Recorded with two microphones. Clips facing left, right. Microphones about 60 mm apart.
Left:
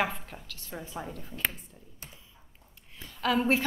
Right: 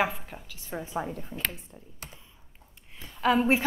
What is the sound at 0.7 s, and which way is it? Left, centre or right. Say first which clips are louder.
Speech: right 6 dB; centre.